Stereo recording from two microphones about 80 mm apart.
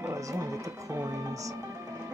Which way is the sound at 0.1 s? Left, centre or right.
Right.